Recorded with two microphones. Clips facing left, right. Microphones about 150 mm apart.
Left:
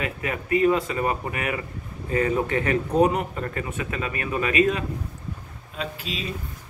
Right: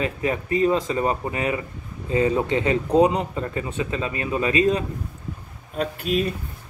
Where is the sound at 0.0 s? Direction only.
30° right (ahead or behind).